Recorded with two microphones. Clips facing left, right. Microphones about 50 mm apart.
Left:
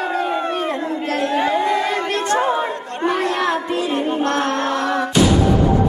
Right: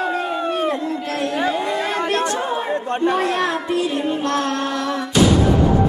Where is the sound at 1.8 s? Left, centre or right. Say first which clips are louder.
Even; right.